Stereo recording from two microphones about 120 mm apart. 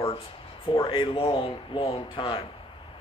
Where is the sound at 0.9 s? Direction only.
50° left (ahead or behind).